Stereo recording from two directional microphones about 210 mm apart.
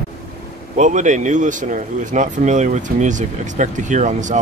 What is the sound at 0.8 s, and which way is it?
Speech, 35° right (ahead or behind).